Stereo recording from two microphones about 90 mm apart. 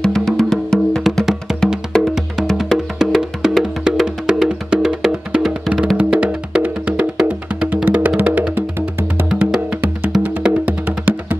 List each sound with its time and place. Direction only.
0.0 s music: 5° left (ahead or behind)
5.9 s music: 15° right (ahead or behind)